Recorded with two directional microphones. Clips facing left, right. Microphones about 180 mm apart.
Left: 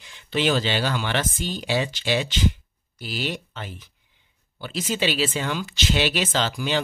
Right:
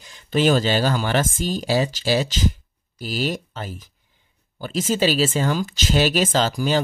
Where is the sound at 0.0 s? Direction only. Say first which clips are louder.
Right 4 dB; 40° right (ahead or behind).